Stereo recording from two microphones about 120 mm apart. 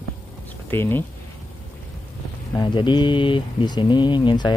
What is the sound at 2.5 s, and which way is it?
Speech, 40° left (ahead or behind).